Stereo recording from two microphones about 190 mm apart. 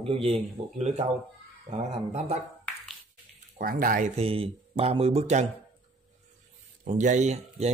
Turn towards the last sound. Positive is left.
turn(degrees=-35)  # may be behind; listen again after turning